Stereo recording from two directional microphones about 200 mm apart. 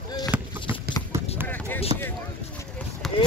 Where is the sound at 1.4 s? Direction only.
10° left (ahead or behind).